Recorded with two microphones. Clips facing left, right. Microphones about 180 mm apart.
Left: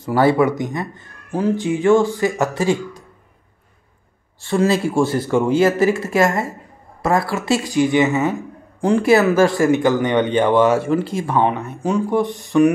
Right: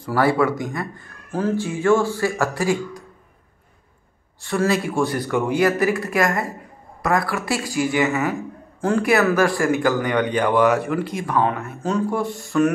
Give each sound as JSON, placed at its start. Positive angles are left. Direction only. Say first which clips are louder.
{"t": 0.0, "sound": "speech", "louder": "left 4 dB", "side_deg": 25}
{"t": 4.4, "sound": "speech", "louder": "left 3 dB", "side_deg": 25}